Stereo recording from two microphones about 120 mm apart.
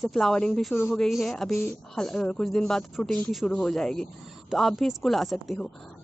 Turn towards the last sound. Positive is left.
turn(degrees=0)  # may be behind; listen again after turning